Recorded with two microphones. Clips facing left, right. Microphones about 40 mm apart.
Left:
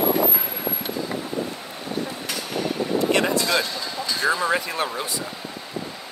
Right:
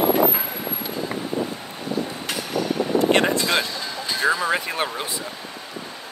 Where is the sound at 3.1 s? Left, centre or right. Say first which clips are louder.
Right 2 dB; right.